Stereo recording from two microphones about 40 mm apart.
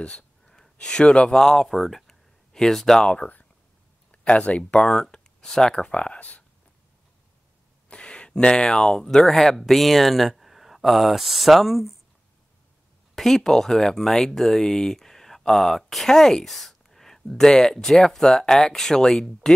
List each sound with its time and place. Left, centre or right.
0.5 s a sound: centre
1.0 s speech: left
1.3 s speech: centre
1.7 s a sound: centre
3.0 s speech: left
4.9 s speech: centre
5.9 s speech: left
7.9 s speech: left; by 11.9 s centre
13.1 s speech: centre